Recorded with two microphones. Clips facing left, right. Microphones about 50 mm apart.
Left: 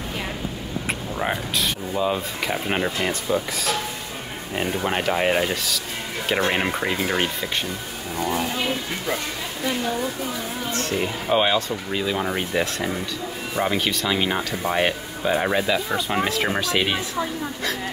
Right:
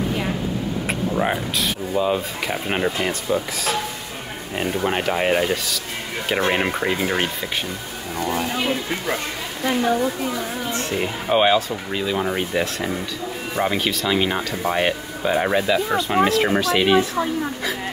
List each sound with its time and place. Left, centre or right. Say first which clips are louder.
0.8 s speech: right 3 dB; centre
8.6 s speech: right 2 dB; centre
10.7 s speech: left 1 dB; centre
11.0 s speech: right 2 dB; centre